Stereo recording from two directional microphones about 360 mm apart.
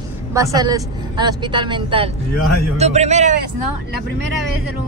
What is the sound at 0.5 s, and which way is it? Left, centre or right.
A woman's voice, centre.